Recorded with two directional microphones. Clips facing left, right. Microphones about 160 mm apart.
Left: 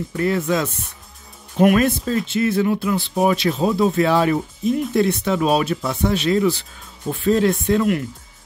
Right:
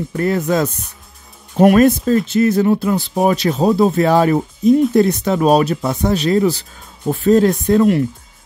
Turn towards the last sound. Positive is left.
turn(degrees=-40)  # may be behind; listen again after turning